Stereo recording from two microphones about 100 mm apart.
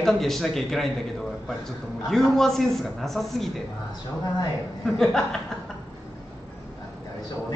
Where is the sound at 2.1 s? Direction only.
5° left (ahead or behind).